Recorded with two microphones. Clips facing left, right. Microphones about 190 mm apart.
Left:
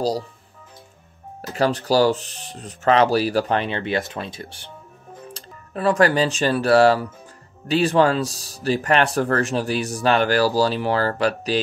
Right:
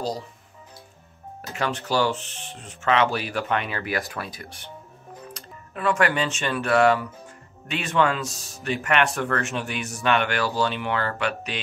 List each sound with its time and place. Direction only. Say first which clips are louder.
1.5 s speech: left 7 dB; 35° left (ahead or behind)